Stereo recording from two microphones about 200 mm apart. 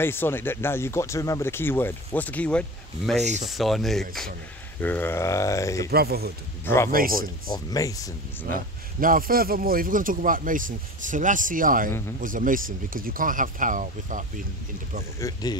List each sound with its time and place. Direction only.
0.0 s speech: 10° left (ahead or behind)
5.9 s speech: 50° right (ahead or behind)
6.6 s speech: 10° left (ahead or behind)
9.0 s speech: 45° right (ahead or behind)
15.1 s speech: 15° left (ahead or behind)